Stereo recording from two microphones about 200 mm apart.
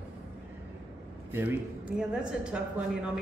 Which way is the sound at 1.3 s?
10° right (ahead or behind).